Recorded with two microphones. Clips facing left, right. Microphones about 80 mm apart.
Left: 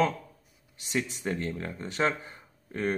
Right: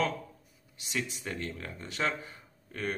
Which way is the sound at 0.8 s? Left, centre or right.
Left.